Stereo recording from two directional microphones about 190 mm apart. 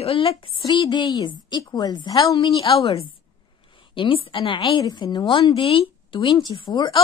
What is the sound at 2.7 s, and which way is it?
A woman's voice, 30° left (ahead or behind).